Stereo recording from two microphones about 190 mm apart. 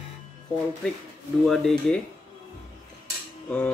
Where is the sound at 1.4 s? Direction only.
Centre (ahead or behind).